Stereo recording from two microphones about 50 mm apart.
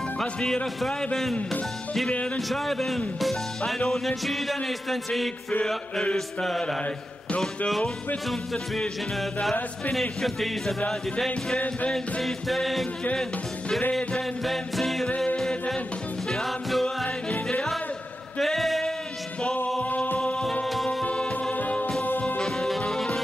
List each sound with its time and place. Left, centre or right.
0.2 s music: centre
2.3 s music: centre
3.2 s speech: centre
3.9 s music: centre
8.3 s music: centre
13.1 s music: centre
15.0 s music: left
16.3 s music: centre
18.4 s a sound: centre
20.6 s music: centre
21.0 s music: left
22.4 s music: centre